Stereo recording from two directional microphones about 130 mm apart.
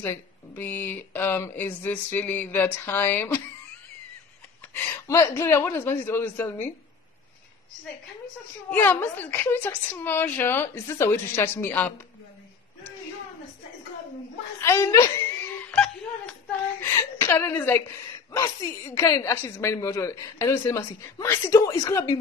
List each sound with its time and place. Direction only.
0.0 s a woman's voice: 15° left (ahead or behind)
4.7 s a woman's voice: 20° left (ahead or behind)
8.6 s a woman's voice: 15° left (ahead or behind)
14.6 s speech: 20° left (ahead or behind)
15.7 s a sound: 5° left (ahead or behind)
16.8 s a woman's voice: 20° left (ahead or behind)